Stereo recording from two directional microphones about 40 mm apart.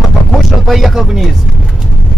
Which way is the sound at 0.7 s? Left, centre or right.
Centre.